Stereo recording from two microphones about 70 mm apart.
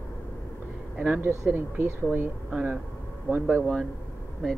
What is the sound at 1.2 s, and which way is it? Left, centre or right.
Speech, right.